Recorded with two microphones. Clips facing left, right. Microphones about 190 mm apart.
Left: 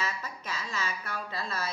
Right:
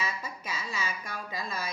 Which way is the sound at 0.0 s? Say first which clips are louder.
Even; 10° right (ahead or behind).